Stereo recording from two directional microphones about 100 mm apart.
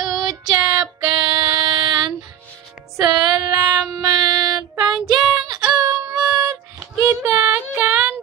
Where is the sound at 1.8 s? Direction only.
50° right (ahead or behind).